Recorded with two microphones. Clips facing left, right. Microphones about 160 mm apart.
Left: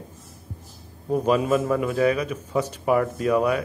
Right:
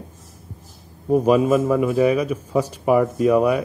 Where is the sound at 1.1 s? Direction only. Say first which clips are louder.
Right 5 dB; 10° right (ahead or behind).